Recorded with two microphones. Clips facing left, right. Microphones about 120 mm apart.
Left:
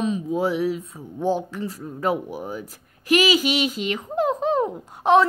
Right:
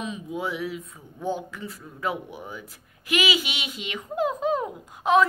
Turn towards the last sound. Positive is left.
turn(degrees=35)  # may be behind; listen again after turning